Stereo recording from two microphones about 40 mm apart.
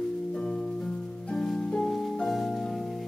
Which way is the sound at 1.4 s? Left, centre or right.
Centre.